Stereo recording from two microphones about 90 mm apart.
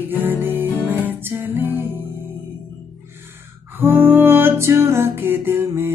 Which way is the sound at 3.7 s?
25° right (ahead or behind).